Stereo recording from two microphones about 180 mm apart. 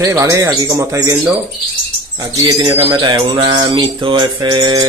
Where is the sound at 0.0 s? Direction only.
15° right (ahead or behind).